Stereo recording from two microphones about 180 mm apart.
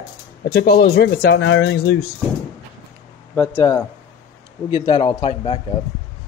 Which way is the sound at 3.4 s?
15° left (ahead or behind).